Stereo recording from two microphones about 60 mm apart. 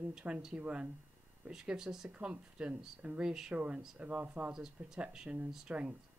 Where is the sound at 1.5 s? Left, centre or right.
Centre.